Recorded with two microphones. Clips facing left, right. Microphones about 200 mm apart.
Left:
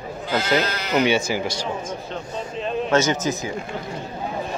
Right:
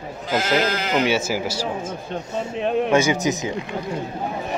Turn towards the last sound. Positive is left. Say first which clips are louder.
# right 1 dB
turn(degrees=-15)  # may be behind; listen again after turning